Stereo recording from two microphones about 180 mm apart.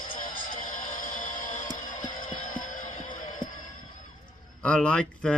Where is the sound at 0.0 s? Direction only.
50° left (ahead or behind).